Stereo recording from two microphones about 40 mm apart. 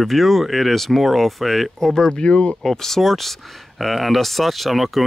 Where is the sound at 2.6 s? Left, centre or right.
Centre.